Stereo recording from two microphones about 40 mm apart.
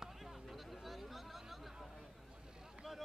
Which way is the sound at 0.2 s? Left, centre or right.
Centre.